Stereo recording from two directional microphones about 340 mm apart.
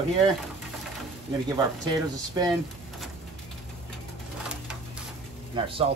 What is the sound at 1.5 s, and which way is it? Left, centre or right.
Speech, centre.